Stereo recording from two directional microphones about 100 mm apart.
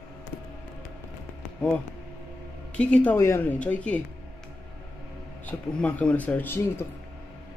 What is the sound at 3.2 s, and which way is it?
Speech, 25° left (ahead or behind).